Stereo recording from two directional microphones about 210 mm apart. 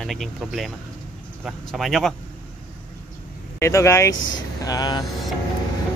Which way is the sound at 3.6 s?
15° left (ahead or behind).